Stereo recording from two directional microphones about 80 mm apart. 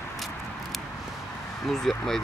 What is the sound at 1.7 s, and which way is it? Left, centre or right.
Speech, centre.